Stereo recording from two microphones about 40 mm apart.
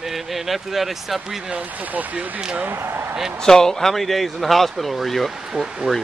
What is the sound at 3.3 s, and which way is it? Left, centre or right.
Speech, centre.